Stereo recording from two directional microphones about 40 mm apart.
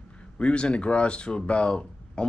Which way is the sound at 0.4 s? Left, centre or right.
Left.